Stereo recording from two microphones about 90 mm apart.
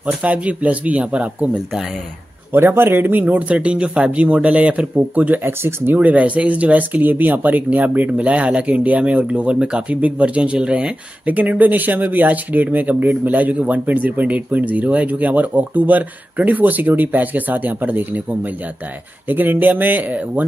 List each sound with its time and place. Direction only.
0.0 s speech: 15° right (ahead or behind)
2.5 s speech: 25° right (ahead or behind)
5.9 s speech: 15° right (ahead or behind)
19.2 s speech: 20° right (ahead or behind)